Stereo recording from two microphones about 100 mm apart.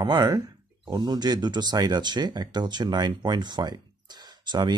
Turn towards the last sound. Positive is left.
turn(degrees=-45)  # may be behind; listen again after turning